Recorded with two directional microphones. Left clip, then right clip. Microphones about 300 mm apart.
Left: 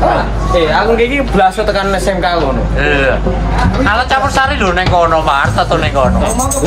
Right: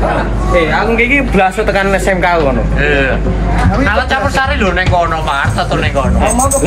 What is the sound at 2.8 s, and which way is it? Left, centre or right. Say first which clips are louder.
Speech: left 3 dB; centre.